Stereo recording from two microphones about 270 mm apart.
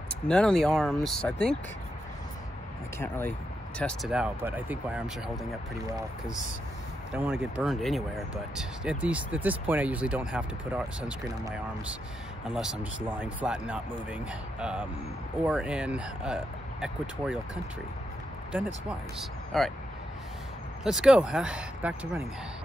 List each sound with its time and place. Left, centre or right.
0.3 s speech: centre
3.0 s speech: centre
7.1 s speech: centre
18.9 s speech: centre
20.8 s speech: centre